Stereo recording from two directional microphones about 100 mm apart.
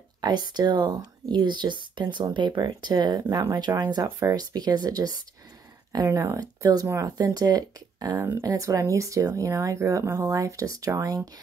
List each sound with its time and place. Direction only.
0.2 s speech: 45° right (ahead or behind)
6.0 s speech: 30° right (ahead or behind)